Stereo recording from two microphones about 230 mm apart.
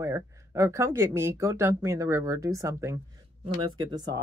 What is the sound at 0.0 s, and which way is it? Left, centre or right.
Speech, centre.